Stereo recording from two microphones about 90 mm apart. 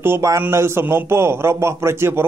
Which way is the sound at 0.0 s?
30° right (ahead or behind).